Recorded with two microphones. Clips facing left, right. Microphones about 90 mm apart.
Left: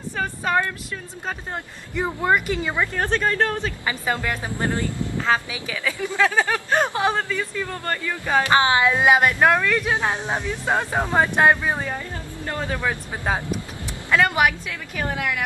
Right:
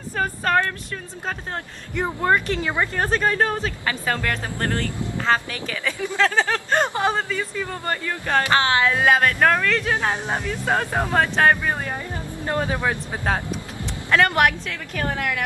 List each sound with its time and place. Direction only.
0.2 s speech: 10° left (ahead or behind)
2.0 s speech: centre (ahead or behind)
2.9 s speech: 5° right (ahead or behind)
3.8 s speech: 10° left (ahead or behind)
7.2 s speech: 10° right (ahead or behind)
8.3 s speech: 15° left (ahead or behind)
12.4 s speech: 20° right (ahead or behind)
14.1 s speech: 5° left (ahead or behind)